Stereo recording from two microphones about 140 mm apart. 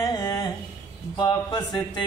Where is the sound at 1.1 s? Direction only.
30° left (ahead or behind).